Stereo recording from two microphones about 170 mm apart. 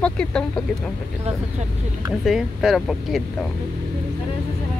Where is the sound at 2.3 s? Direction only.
Centre (ahead or behind).